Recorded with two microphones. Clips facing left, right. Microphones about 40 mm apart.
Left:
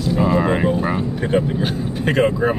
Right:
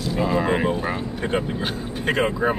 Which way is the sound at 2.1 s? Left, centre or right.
Centre.